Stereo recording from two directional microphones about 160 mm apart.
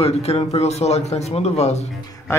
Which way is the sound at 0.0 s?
40° left (ahead or behind).